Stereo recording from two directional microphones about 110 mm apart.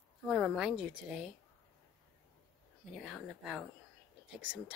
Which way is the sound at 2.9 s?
5° right (ahead or behind).